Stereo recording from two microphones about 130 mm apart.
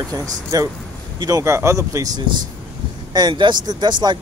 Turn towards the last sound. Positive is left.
turn(degrees=-35)  # may be behind; listen again after turning